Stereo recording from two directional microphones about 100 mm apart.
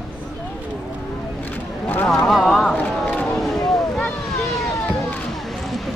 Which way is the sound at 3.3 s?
5° left (ahead or behind).